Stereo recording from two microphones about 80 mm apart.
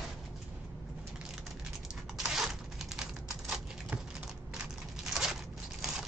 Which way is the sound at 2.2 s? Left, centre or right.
Centre.